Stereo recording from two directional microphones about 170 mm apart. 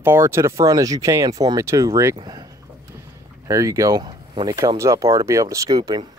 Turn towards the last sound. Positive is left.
turn(degrees=-20)  # may be behind; listen again after turning